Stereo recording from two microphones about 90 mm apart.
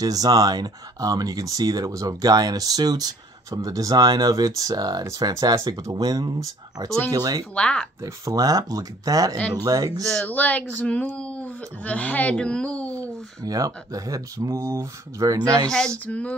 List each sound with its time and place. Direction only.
0.0 s speech: 45° right (ahead or behind)
7.5 s speech: 10° left (ahead or behind)
8.0 s speech: 40° right (ahead or behind)
10.0 s speech: 15° left (ahead or behind)
13.4 s speech: 40° right (ahead or behind)
16.1 s speech: 15° left (ahead or behind)